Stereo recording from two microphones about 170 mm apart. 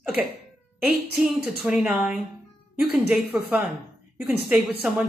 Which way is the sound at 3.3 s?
15° right (ahead or behind).